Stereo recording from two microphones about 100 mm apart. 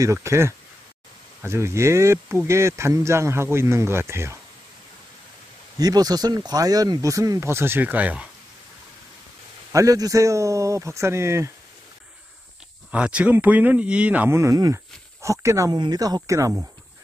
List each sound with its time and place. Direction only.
0.0 s speech: 30° right (ahead or behind)
5.8 s speech: 40° right (ahead or behind); by 8.3 s 15° right (ahead or behind)
9.7 s speech: 35° right (ahead or behind)
12.9 s speech: 10° right (ahead or behind)
14.3 s speech: 30° right (ahead or behind)
16.2 s speech: 30° right (ahead or behind)